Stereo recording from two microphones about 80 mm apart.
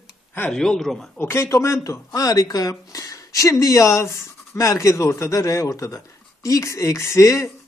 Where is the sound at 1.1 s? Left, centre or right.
Left.